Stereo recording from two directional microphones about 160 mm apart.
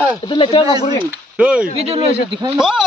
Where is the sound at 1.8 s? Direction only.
40° right (ahead or behind).